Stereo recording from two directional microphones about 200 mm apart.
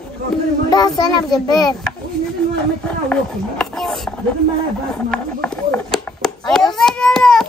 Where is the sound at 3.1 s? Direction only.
5° left (ahead or behind).